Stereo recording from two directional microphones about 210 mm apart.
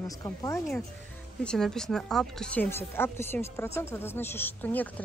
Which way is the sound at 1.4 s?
5° left (ahead or behind).